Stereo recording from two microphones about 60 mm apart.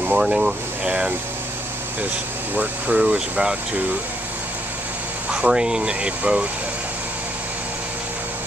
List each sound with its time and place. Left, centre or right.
0.2 s speech: centre
2.5 s speech: right
3.0 s speech: centre
5.3 s speech: centre